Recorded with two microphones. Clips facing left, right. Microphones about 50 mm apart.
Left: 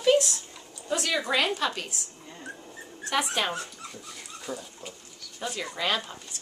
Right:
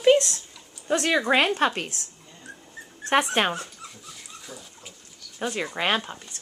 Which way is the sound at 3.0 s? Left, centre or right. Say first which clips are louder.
Right 6 dB; right.